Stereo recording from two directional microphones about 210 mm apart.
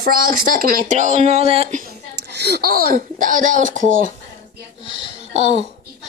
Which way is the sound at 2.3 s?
50° right (ahead or behind).